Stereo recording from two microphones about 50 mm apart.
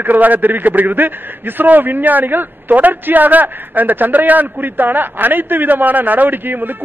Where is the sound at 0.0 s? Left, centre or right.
Right.